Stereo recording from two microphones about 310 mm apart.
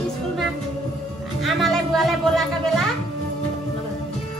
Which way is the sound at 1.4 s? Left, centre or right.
Centre.